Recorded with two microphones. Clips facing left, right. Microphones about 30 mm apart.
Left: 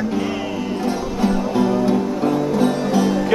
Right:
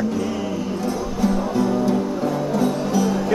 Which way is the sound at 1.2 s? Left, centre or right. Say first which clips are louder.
Left 2 dB; left.